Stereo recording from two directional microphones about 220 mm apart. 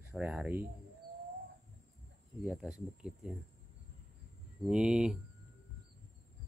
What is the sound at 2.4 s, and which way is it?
Speech, centre (ahead or behind).